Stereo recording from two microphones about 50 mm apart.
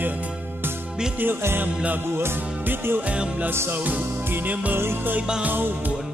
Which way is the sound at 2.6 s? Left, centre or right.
Right.